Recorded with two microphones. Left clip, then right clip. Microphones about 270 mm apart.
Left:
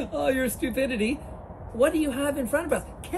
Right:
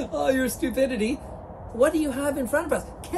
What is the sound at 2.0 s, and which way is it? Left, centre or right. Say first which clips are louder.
Speech: right 1 dB; centre.